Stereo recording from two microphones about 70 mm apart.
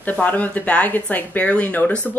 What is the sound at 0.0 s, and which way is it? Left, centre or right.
Speech, left.